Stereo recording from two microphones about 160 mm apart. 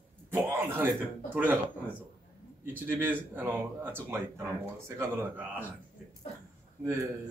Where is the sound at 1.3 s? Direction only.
10° right (ahead or behind).